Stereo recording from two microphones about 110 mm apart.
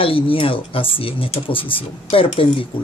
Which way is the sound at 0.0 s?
55° left (ahead or behind).